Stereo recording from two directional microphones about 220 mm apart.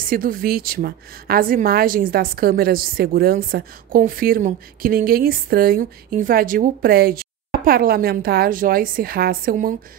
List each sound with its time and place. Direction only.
0.1 s a woman's voice: 40° right (ahead or behind)